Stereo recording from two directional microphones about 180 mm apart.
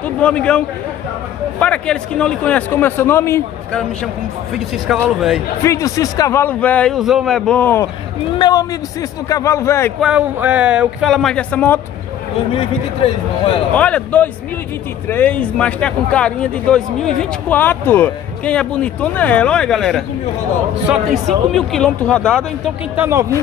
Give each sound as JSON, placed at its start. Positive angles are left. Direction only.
{"t": 0.0, "sound": "a man's voice", "side_deg": 5}
{"t": 4.8, "sound": "speech", "side_deg": 0}
{"t": 5.6, "sound": "speech", "side_deg": 15}
{"t": 8.4, "sound": "a man's voice", "side_deg": 25}
{"t": 9.9, "sound": "speech", "side_deg": -5}
{"t": 12.5, "sound": "a man's voice", "side_deg": 30}
{"t": 13.7, "sound": "speech", "side_deg": 5}
{"t": 22.9, "sound": "speech", "side_deg": -15}